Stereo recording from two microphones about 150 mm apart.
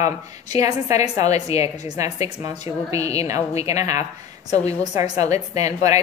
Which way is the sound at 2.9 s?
20° right (ahead or behind).